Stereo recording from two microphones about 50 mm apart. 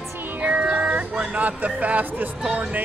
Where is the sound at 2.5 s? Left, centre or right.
Right.